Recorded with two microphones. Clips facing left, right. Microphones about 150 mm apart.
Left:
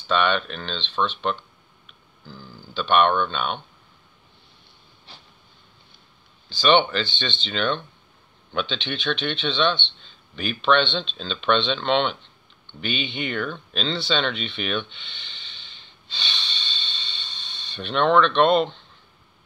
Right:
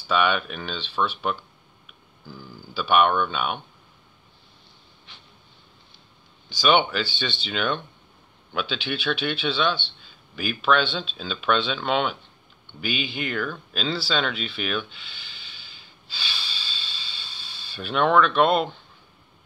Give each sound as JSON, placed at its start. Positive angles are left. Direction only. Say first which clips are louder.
{"t": 0.0, "sound": "a man's voice", "louder": "left 1 dB", "side_deg": -10}
{"t": 5.1, "sound": "a sound", "louder": "left 4 dB", "side_deg": 35}
{"t": 6.5, "sound": "a man's voice", "louder": "left 2 dB", "side_deg": -10}